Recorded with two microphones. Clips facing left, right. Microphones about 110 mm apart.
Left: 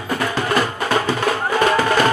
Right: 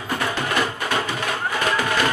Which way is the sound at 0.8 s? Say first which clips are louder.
Left 6 dB; 40° left (ahead or behind).